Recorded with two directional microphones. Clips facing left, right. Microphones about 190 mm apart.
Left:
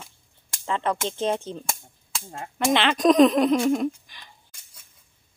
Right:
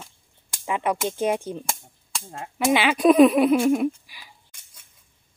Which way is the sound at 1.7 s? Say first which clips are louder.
Even; centre (ahead or behind).